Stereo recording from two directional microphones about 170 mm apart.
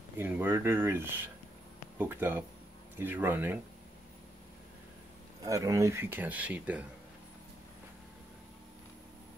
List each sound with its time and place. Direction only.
0.2 s speech: 10° right (ahead or behind)
5.4 s speech: 20° right (ahead or behind)